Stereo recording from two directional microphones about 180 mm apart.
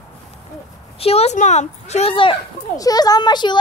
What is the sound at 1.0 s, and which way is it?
A woman's voice, 35° left (ahead or behind).